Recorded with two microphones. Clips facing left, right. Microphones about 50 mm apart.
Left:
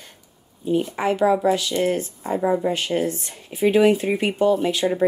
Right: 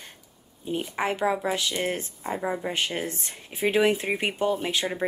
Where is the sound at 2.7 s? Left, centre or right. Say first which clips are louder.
Left 6 dB; right.